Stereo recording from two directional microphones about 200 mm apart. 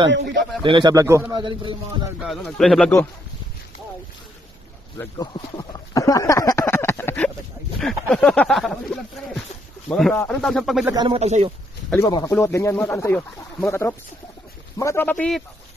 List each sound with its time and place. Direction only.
0.1 s a man's voice: 65° right (ahead or behind)
0.7 s a man's voice: 20° right (ahead or behind)
2.2 s speech: centre (ahead or behind)
4.9 s speech: 20° left (ahead or behind); by 8.7 s centre (ahead or behind)
9.8 s speech: 5° left (ahead or behind)
10.9 s a man's voice: 25° right (ahead or behind)
11.9 s speech: 20° left (ahead or behind)